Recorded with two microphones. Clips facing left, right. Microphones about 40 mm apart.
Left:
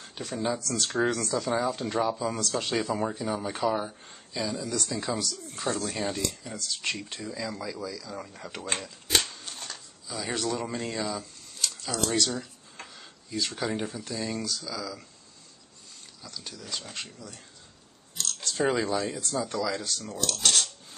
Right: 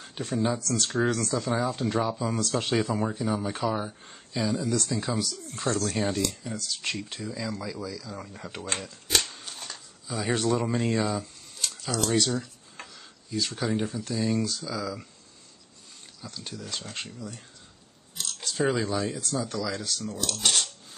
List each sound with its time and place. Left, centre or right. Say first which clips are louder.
0.3 s speech: right 3 dB; centre
9.3 s a sound: even; centre
10.2 s speech: right 4 dB; centre
11.0 s a sound: right 4 dB; centre
11.7 s speech: right 3 dB; centre
14.4 s speech: right 3 dB; centre
16.2 s speech: right 3 dB; centre
16.6 s speech: left 1 dB; centre
16.9 s speech: right 3 dB; centre